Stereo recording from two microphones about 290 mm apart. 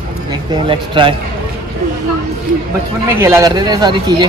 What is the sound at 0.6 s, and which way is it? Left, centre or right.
Speech, centre.